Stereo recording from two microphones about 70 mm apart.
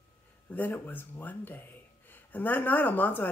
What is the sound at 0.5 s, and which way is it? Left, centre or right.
Speech, left.